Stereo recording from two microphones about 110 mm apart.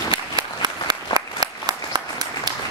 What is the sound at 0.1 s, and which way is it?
Applause, 40° right (ahead or behind).